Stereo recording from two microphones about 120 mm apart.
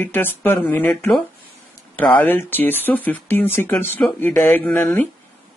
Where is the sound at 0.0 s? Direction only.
15° left (ahead or behind).